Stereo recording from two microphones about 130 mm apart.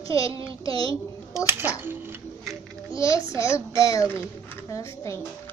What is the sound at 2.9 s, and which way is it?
A child's voice, 25° left (ahead or behind).